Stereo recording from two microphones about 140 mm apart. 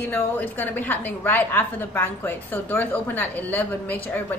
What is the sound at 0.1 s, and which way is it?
A woman's voice, 15° left (ahead or behind).